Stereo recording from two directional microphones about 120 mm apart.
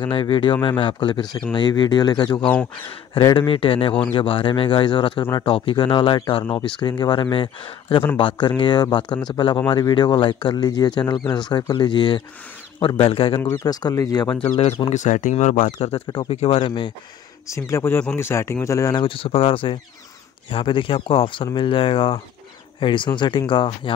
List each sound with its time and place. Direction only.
0.1 s speech: 40° left (ahead or behind)
3.3 s speech: 50° left (ahead or behind)
13.4 s speech: 30° left (ahead or behind)
14.9 s speech: 85° left
16.3 s speech: 55° left (ahead or behind)
17.5 s speech: 25° left (ahead or behind)
18.9 s speech: 45° left (ahead or behind)